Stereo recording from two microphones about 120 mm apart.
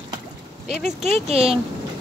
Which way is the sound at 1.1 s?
55° right (ahead or behind).